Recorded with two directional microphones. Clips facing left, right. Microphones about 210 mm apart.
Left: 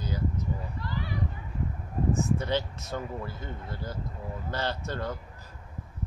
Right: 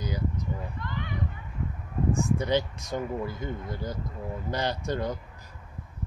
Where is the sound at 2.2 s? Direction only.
15° right (ahead or behind).